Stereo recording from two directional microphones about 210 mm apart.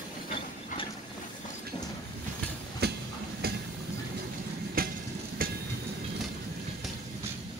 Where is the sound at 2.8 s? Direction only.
50° right (ahead or behind).